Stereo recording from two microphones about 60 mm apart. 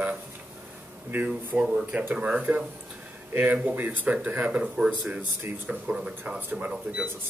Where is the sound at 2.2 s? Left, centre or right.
Right.